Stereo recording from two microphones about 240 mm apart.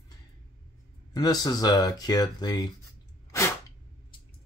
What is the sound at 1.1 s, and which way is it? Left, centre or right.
Speech, centre.